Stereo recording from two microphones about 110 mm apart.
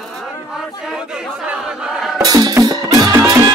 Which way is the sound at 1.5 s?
5° right (ahead or behind).